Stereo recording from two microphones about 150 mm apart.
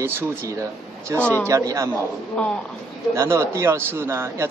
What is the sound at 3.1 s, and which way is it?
A man's voice, 15° right (ahead or behind).